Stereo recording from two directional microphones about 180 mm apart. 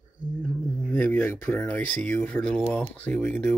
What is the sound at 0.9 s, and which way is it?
Speech, 10° left (ahead or behind).